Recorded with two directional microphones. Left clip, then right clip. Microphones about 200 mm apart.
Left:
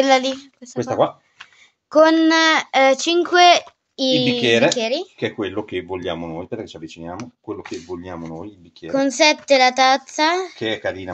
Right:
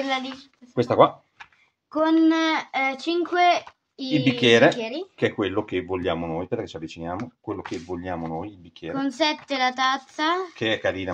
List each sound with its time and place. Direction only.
0.0 s speech: 65° left (ahead or behind)
0.7 s speech: 25° right (ahead or behind)
1.9 s speech: 60° left (ahead or behind)
4.4 s speech: 20° right (ahead or behind)
4.7 s speech: 50° left (ahead or behind)
5.2 s speech: 20° right (ahead or behind)
8.9 s speech: 35° left (ahead or behind)
10.6 s speech: 20° right (ahead or behind)